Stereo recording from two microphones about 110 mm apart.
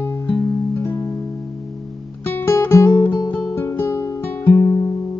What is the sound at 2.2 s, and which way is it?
Music, 25° left (ahead or behind).